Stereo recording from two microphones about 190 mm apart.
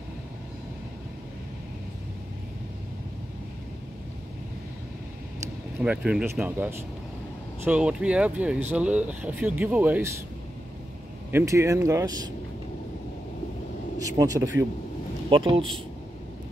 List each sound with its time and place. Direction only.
5.8 s speech: 5° right (ahead or behind)
11.3 s speech: 15° right (ahead or behind)
14.0 s speech: 15° right (ahead or behind)